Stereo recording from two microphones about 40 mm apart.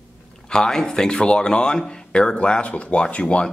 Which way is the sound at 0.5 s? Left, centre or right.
Centre.